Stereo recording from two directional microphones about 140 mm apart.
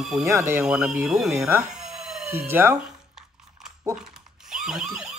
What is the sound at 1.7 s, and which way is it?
Telephone bell ringing, 5° right (ahead or behind).